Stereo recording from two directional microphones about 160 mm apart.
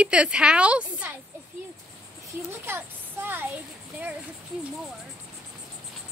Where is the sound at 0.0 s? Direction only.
5° right (ahead or behind).